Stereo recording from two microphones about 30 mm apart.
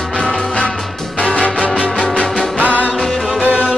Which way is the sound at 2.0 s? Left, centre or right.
Left.